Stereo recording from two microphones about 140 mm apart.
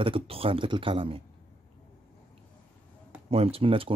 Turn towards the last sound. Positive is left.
turn(degrees=-40)  # may be behind; listen again after turning